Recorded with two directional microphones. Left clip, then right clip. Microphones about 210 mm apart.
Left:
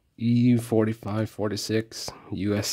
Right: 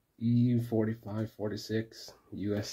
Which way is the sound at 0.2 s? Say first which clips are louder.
Left 7 dB; 55° left (ahead or behind).